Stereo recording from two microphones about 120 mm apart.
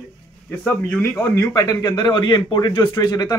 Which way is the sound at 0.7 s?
15° left (ahead or behind).